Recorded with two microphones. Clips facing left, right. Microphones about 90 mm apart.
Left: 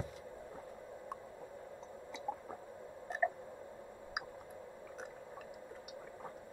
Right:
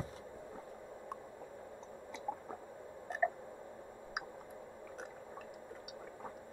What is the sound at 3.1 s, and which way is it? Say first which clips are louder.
Tick: right 1 dB; centre (ahead or behind).